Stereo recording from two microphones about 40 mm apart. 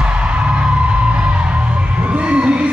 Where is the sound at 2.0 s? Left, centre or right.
Right.